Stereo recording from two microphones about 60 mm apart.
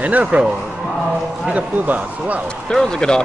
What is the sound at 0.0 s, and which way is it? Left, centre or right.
Speech, right.